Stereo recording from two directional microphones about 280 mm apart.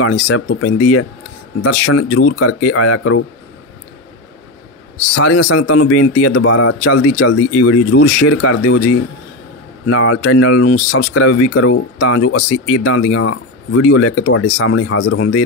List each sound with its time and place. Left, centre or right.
0.0 s a man's voice: left
5.1 s a man's voice: left